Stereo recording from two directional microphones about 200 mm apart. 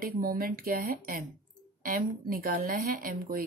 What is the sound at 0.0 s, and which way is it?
Speech, 45° right (ahead or behind).